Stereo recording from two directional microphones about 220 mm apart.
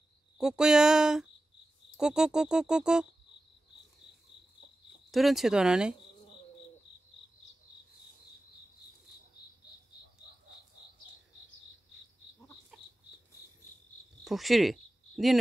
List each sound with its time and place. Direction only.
0.4 s speech: 5° right (ahead or behind)
5.1 s speech: centre (ahead or behind)
12.7 s a sound: centre (ahead or behind)
14.2 s cricket: centre (ahead or behind)